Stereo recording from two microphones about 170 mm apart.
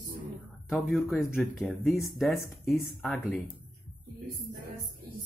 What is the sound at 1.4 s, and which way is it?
Speech, centre (ahead or behind).